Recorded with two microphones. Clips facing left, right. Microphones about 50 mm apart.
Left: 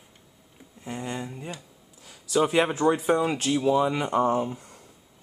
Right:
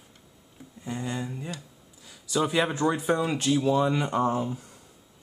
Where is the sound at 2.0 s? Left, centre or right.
Left.